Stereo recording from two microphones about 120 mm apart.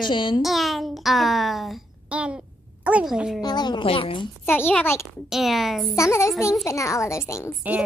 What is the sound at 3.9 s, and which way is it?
Speech, 50° left (ahead or behind).